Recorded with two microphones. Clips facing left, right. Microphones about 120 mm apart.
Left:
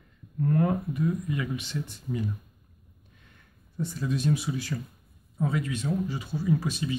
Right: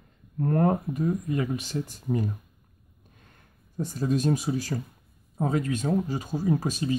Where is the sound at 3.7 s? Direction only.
40° right (ahead or behind).